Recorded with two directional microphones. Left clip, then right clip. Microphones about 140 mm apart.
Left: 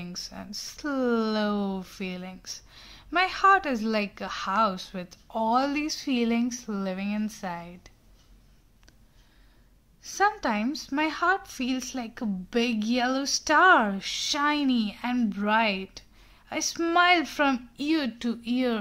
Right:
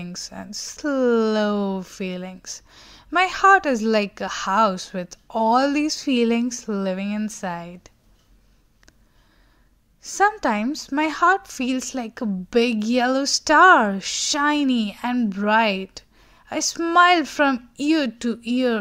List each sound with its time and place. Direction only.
0.0 s speech: 45° right (ahead or behind)
10.0 s speech: 55° right (ahead or behind)
16.7 s speech: 30° right (ahead or behind)
17.0 s speech: 40° right (ahead or behind)